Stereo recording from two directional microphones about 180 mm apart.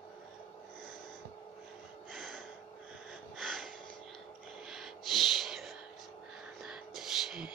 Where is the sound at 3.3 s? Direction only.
Centre (ahead or behind).